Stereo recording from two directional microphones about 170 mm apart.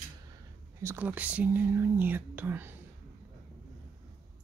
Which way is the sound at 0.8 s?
10° right (ahead or behind).